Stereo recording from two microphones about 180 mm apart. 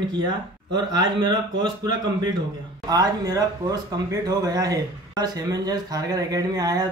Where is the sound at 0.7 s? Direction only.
25° right (ahead or behind).